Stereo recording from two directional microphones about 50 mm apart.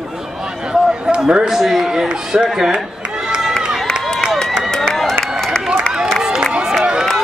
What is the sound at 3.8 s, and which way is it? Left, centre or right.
Run, centre.